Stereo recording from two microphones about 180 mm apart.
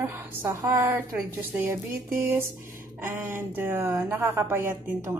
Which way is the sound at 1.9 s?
50° right (ahead or behind).